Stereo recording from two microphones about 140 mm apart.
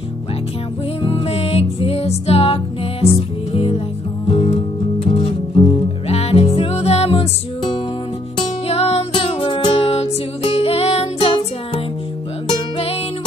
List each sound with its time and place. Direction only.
1.0 s music: 45° left (ahead or behind)
8.6 s music: 45° left (ahead or behind)